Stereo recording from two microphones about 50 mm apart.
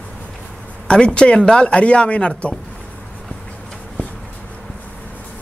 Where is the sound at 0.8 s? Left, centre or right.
Centre.